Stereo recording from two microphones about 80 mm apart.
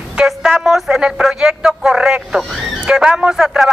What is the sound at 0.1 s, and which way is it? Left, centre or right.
Speech, centre.